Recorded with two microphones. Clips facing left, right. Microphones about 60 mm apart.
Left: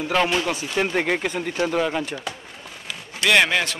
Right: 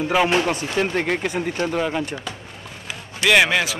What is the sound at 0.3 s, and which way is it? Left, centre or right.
Speech, right.